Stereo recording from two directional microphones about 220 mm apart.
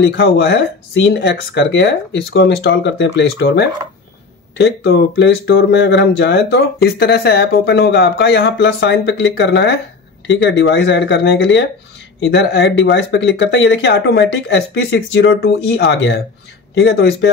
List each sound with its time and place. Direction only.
0.0 s speech: 50° left (ahead or behind)